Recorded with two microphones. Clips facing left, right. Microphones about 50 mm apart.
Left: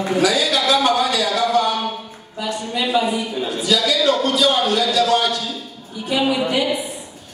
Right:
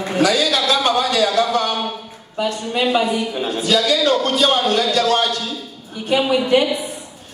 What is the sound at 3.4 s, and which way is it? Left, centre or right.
A man's voice, right.